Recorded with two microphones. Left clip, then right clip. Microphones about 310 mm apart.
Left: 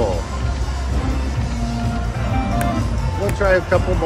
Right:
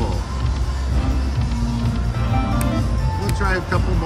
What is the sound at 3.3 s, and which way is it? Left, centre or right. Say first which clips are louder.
Speech: left 7 dB; centre.